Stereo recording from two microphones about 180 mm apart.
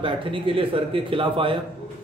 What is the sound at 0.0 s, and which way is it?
A man's voice, 30° right (ahead or behind).